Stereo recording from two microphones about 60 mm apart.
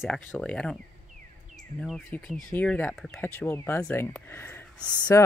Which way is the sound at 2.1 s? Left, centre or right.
Left.